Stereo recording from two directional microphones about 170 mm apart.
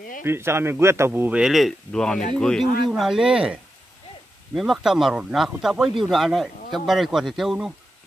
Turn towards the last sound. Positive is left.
turn(degrees=0)  # may be behind; listen again after turning